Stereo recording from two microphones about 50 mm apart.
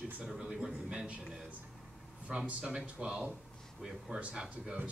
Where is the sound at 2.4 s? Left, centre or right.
Right.